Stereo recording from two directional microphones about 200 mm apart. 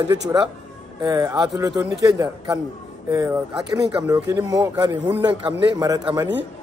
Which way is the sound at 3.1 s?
15° right (ahead or behind).